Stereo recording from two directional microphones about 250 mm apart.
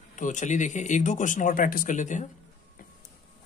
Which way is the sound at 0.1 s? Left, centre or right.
Left.